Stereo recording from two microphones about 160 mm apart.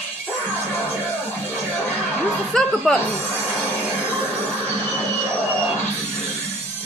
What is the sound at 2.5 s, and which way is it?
Speech, 5° left (ahead or behind).